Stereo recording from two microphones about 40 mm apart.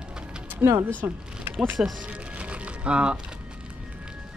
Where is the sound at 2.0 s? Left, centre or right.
Right.